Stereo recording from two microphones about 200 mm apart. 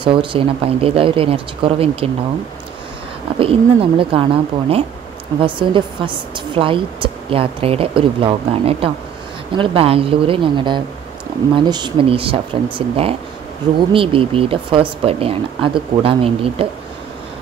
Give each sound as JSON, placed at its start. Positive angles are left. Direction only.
{"t": 0.0, "sound": "speech", "side_deg": -25}
{"t": 3.3, "sound": "speech", "side_deg": -25}